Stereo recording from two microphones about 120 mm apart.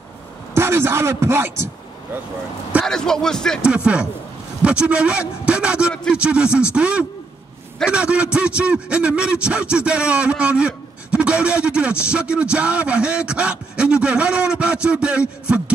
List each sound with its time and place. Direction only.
0.6 s a man's voice: 20° right (ahead or behind)
2.8 s speech: 5° left (ahead or behind)
3.6 s a man's voice: 10° right (ahead or behind)